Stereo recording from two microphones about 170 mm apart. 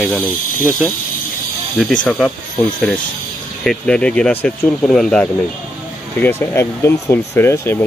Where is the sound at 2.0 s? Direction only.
10° left (ahead or behind).